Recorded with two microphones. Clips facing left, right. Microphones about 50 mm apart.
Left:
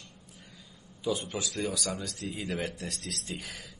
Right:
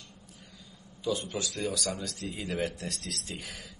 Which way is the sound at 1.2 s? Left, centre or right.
Centre.